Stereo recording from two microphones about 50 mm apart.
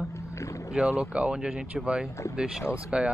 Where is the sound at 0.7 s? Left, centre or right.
Right.